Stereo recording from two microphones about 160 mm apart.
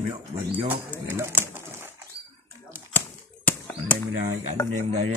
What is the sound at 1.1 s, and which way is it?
Speech, 15° right (ahead or behind).